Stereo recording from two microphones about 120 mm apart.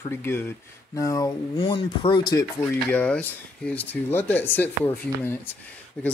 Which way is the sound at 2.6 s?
10° left (ahead or behind).